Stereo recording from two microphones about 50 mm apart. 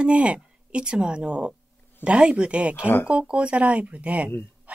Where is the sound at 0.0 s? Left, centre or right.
Right.